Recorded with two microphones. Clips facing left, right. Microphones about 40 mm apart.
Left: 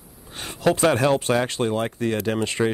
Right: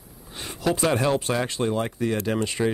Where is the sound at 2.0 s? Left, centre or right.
Left.